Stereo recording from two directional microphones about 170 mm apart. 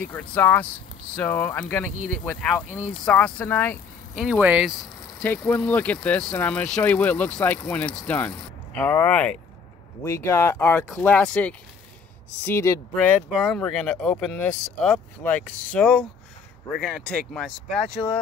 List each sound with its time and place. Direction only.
0.0 s speech: 10° left (ahead or behind)
4.2 s speech: 5° right (ahead or behind)
5.2 s speech: 10° left (ahead or behind)
13.3 s speech: centre (ahead or behind)